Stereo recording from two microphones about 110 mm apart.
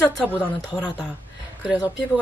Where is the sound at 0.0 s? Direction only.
20° left (ahead or behind).